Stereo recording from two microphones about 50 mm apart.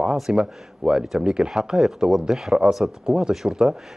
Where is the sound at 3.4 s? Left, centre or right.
Centre.